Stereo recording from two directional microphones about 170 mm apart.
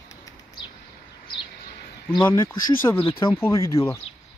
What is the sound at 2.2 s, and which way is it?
Speech, 10° left (ahead or behind).